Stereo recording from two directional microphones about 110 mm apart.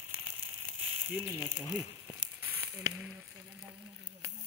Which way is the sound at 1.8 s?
15° right (ahead or behind).